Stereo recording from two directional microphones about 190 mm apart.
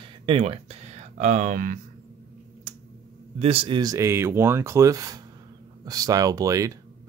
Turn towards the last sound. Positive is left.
turn(degrees=-15)  # may be behind; listen again after turning